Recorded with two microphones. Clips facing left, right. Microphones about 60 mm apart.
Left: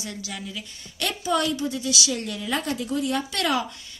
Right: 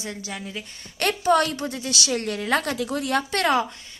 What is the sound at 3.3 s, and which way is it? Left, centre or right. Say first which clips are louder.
Speech: right 5 dB; right.